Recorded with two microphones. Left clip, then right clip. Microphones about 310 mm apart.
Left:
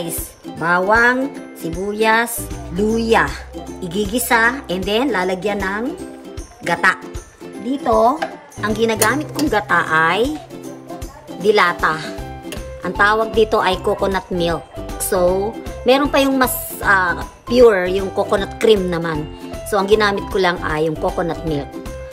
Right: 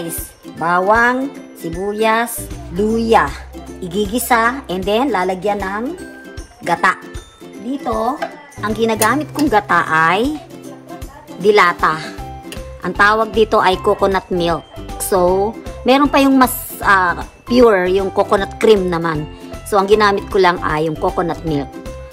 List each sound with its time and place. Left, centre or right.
0.1 s a woman's voice: centre
8.5 s a woman's voice: centre
11.4 s a woman's voice: centre
15.0 s music: centre
15.8 s a woman's voice: centre